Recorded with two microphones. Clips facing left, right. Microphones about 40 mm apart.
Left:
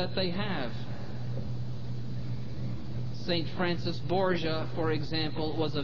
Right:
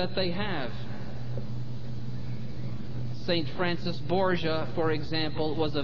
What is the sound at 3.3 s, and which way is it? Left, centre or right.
A woman's voice, centre.